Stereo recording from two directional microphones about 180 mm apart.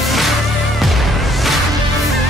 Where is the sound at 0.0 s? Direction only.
Centre (ahead or behind).